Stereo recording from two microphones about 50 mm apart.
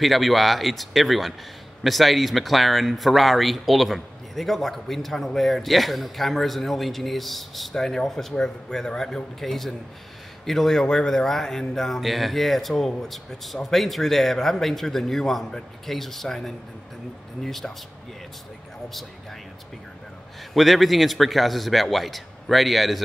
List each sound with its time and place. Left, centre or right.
0.0 s a man's voice: centre
20.5 s speech: centre